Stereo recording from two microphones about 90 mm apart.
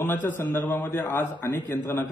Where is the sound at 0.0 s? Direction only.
20° left (ahead or behind).